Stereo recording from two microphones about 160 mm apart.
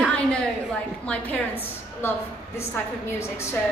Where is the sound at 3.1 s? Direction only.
15° left (ahead or behind).